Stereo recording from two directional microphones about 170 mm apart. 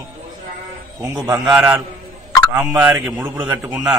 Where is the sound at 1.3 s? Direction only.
10° right (ahead or behind).